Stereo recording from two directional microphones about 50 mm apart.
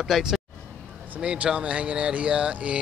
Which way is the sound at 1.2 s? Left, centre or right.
Right.